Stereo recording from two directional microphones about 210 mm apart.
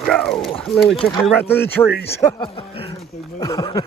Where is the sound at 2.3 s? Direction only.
25° left (ahead or behind).